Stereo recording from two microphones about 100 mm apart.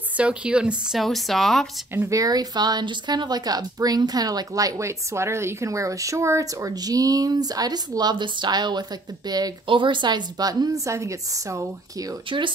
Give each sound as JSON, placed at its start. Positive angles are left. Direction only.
{"t": 0.2, "sound": "speech", "side_deg": -10}
{"t": 2.0, "sound": "a woman's voice", "side_deg": -35}
{"t": 9.7, "sound": "a woman's voice", "side_deg": -55}
{"t": 12.3, "sound": "speech", "side_deg": -55}